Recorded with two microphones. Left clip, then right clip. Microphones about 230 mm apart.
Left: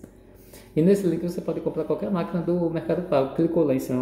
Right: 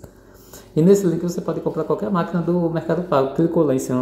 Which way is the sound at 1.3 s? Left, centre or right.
Centre.